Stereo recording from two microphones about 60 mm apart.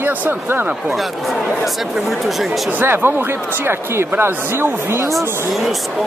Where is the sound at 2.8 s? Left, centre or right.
Right.